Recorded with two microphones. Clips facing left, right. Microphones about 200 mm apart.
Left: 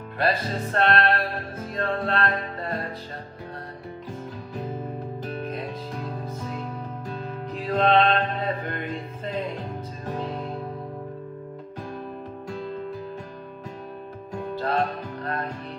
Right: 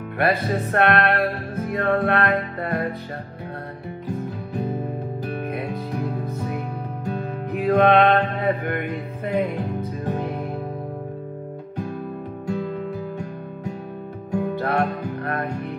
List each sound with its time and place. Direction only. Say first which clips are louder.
0.2 s music: right 4 dB; 65° right (ahead or behind)
5.2 s music: right 3 dB; 65° right (ahead or behind)
12.4 s music: right 6 dB; 70° right (ahead or behind)
14.3 s music: right 4 dB; 65° right (ahead or behind)